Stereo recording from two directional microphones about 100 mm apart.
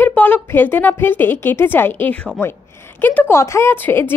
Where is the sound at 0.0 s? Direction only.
15° left (ahead or behind).